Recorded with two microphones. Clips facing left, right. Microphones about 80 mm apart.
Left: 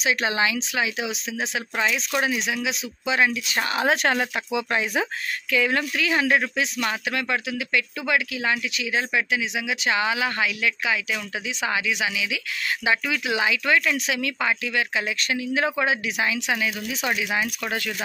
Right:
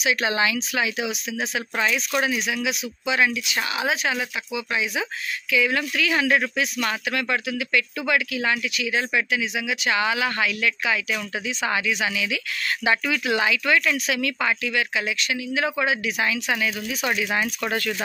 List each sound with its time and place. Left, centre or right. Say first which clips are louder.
0.0 s speech: right 1 dB; left
3.4 s speech: left 2 dB; left
3.9 s speech: left 3 dB; left
5.5 s speech: even; left
15.1 s speech: left 1 dB; left
15.8 s speech: even; left